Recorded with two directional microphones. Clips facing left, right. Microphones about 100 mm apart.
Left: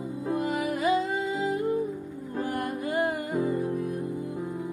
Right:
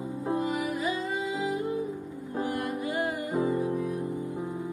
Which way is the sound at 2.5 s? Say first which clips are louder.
Left 5 dB; 50° left (ahead or behind).